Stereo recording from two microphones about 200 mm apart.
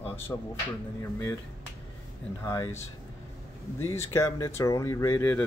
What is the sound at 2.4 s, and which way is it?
Speech, 15° left (ahead or behind).